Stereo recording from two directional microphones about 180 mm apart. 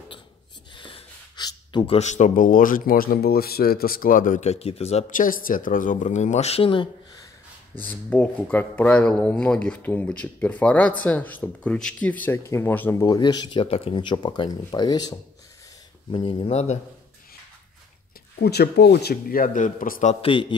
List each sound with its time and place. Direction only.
0.7 s gasp: 25° left (ahead or behind)
2.0 s speech: 40° left (ahead or behind)
7.7 s speech: 10° left (ahead or behind); by 16.7 s 35° left (ahead or behind)
18.4 s speech: 65° left (ahead or behind); by 20.5 s 30° left (ahead or behind)